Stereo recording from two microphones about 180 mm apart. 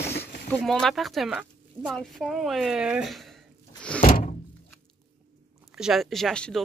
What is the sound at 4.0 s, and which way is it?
Door, 40° left (ahead or behind).